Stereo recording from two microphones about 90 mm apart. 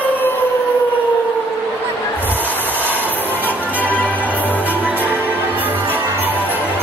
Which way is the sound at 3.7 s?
20° left (ahead or behind).